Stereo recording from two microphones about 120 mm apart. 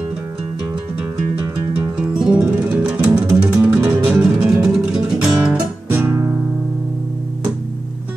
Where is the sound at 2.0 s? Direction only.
5° right (ahead or behind).